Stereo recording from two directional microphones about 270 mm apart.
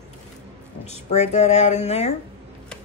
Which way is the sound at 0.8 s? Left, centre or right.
Left.